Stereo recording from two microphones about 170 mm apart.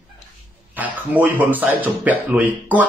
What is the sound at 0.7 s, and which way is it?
Speech, 10° right (ahead or behind).